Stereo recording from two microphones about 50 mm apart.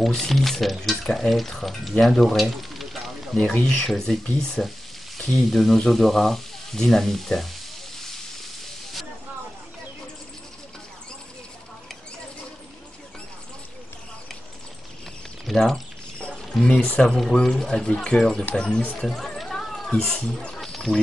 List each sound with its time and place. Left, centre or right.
0.3 s speech: centre
3.5 s speech: centre
8.0 s a sound: centre
15.4 s speech: centre
16.2 s pour: left
17.1 s speech: centre; by 18.9 s left
18.9 s a sound: centre
19.9 s speech: centre
20.5 s a sound: centre